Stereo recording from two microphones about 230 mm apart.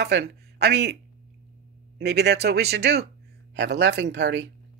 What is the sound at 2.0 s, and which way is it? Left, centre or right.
Speech, right.